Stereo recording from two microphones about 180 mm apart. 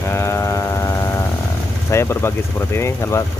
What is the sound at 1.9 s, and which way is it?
Speech, 15° left (ahead or behind).